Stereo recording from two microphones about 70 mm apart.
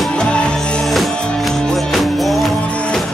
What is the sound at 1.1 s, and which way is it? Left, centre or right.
Music, centre.